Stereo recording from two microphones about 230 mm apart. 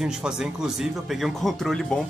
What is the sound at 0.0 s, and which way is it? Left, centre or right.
Speech, centre.